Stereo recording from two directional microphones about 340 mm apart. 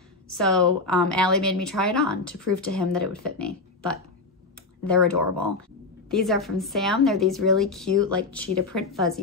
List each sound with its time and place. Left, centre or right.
0.3 s a woman's voice: centre